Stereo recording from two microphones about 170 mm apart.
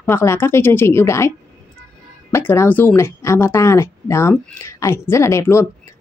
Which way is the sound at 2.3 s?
15° left (ahead or behind).